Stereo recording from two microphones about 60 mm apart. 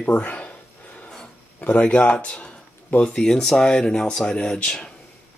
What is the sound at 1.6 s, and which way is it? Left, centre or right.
A man's voice, left.